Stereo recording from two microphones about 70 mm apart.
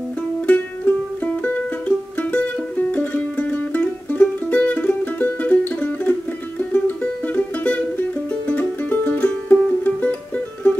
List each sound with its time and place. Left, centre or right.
0.5 s music: left